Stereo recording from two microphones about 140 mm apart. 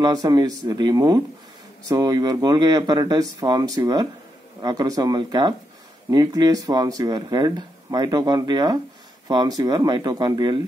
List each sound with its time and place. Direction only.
0.0 s speech: 25° right (ahead or behind)